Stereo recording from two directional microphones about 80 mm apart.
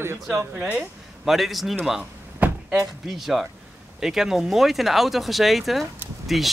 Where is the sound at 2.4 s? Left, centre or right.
Right.